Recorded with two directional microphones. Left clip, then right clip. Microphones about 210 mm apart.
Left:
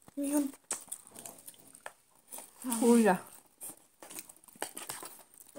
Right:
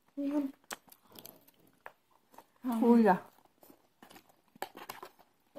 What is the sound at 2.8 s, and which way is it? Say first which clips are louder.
Speech: even; centre (ahead or behind).